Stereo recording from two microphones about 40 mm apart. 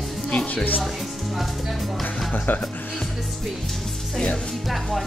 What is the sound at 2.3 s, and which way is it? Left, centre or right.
Speech, left.